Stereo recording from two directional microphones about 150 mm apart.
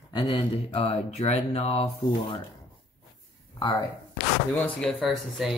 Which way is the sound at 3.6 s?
25° left (ahead or behind).